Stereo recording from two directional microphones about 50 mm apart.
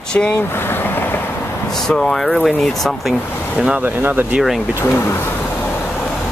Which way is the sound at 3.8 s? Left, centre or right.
Right.